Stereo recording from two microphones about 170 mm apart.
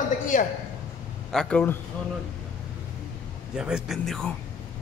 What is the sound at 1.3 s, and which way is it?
Speech, 5° left (ahead or behind).